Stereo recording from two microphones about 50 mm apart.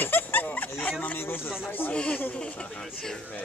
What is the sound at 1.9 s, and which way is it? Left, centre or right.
Speech, left.